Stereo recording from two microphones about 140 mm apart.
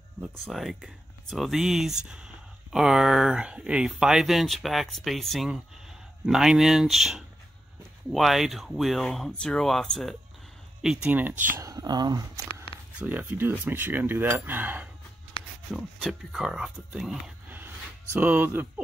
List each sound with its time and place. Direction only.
0.2 s speech: centre (ahead or behind)
11.5 s speech: 25° right (ahead or behind)
13.0 s speech: 10° right (ahead or behind)
15.7 s speech: centre (ahead or behind)
17.5 s a sound: 15° right (ahead or behind)